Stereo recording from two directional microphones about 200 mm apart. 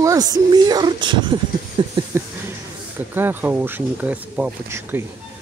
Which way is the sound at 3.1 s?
10° right (ahead or behind).